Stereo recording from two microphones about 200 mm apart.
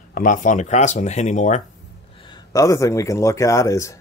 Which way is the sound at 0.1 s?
40° left (ahead or behind).